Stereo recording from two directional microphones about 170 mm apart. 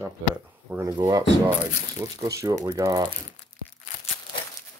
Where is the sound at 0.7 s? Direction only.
20° right (ahead or behind).